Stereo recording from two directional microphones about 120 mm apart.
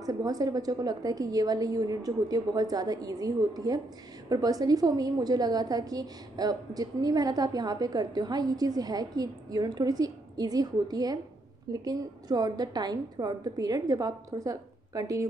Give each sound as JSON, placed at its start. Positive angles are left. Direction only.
{"t": 0.0, "sound": "a woman's voice", "side_deg": -30}